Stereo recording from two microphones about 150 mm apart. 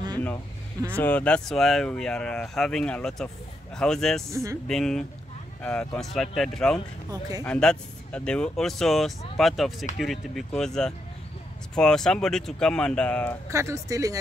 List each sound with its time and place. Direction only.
0.9 s speech: 10° left (ahead or behind)
4.3 s speech: 20° right (ahead or behind)
4.6 s speech: 5° left (ahead or behind)
7.1 s speech: 25° right (ahead or behind)
7.4 s speech: 5° left (ahead or behind)
13.5 s speech: 20° right (ahead or behind)